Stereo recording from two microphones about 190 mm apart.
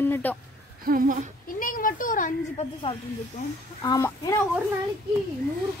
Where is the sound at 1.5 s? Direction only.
45° left (ahead or behind).